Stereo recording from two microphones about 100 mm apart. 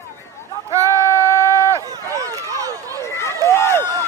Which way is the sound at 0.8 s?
30° left (ahead or behind).